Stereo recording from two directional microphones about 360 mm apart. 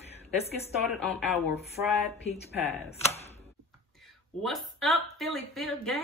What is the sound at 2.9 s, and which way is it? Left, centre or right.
Speech, centre.